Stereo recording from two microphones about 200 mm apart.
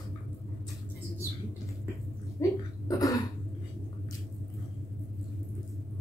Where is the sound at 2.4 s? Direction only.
15° left (ahead or behind).